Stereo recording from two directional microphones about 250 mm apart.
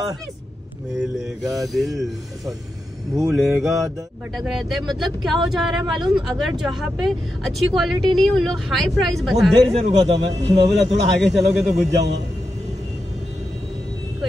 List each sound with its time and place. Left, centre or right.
1.6 s speech: centre
3.2 s speech: centre
9.8 s a man's voice: right
10.7 s speech: centre